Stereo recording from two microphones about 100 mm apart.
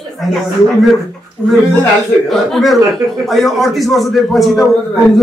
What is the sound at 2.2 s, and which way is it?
Speech, centre (ahead or behind).